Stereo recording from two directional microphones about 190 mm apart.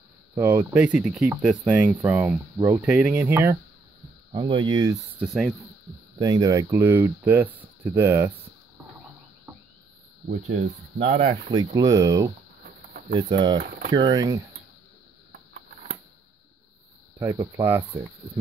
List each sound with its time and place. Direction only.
0.4 s speech: 10° right (ahead or behind)
4.3 s speech: 25° right (ahead or behind)
5.2 s speech: centre (ahead or behind)
6.1 s speech: 20° right (ahead or behind)
10.2 s speech: 35° right (ahead or behind)
11.2 s speech: 25° right (ahead or behind)
13.3 s speech: 20° right (ahead or behind)
13.6 s speech: 50° right (ahead or behind)
13.9 s speech: 20° right (ahead or behind)
17.4 s speech: 15° right (ahead or behind)